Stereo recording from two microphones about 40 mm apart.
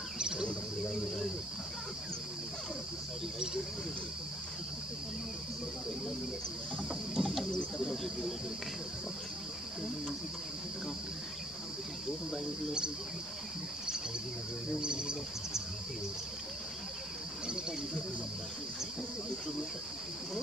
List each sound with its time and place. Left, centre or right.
0.2 s bird: centre
0.8 s speech: centre
6.9 s bird: centre
7.9 s cricket: centre
14.8 s insect: right